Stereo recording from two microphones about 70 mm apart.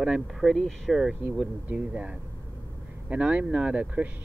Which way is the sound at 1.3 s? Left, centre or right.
Centre.